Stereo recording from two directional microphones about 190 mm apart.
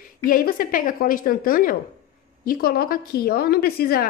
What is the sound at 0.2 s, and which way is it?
A woman's voice, 50° left (ahead or behind).